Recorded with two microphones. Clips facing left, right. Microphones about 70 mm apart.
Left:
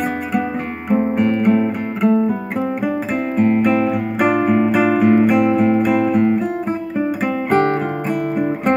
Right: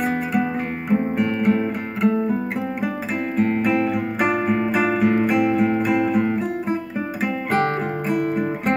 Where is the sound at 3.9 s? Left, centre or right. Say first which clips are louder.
Left 4 dB; left.